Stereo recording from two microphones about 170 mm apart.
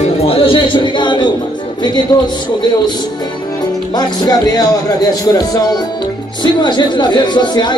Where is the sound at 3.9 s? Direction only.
25° left (ahead or behind).